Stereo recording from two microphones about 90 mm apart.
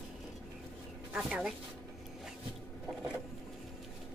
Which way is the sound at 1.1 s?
10° right (ahead or behind).